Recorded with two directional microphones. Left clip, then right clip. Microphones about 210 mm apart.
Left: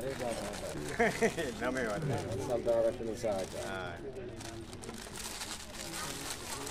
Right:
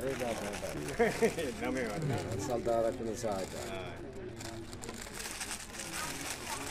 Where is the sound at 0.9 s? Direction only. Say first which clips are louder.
Even; 20° left (ahead or behind).